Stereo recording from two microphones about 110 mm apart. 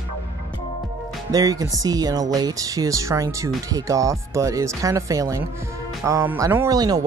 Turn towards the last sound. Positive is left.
turn(degrees=-35)  # may be behind; listen again after turning